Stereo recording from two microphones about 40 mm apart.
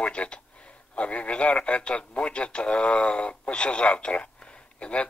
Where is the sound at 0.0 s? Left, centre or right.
Left.